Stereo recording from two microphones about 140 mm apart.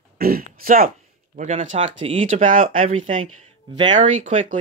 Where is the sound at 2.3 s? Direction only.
65° right (ahead or behind).